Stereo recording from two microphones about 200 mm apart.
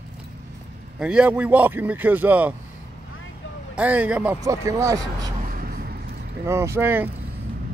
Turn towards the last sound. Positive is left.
turn(degrees=-10)  # may be behind; listen again after turning